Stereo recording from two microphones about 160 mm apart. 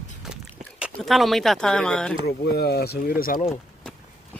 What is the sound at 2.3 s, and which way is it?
Speech, 80° left.